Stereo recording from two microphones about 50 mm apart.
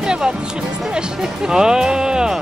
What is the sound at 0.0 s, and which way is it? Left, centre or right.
Music, centre.